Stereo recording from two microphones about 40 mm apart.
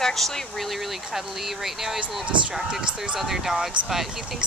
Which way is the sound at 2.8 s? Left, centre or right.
Right.